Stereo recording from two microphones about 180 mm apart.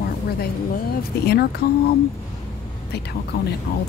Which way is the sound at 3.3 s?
60° left (ahead or behind).